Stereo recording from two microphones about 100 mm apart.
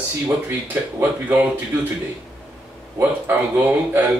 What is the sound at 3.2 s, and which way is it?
Speech, 15° right (ahead or behind).